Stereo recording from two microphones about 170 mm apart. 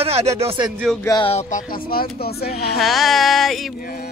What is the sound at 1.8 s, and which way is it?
Speech, 65° left (ahead or behind).